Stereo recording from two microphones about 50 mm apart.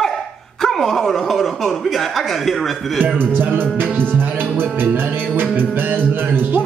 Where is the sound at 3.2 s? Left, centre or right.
Right.